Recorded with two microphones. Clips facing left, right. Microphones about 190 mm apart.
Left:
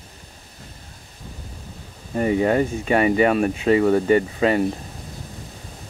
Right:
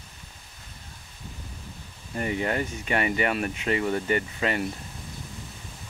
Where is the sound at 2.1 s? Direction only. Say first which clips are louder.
Left 9 dB; 30° left (ahead or behind).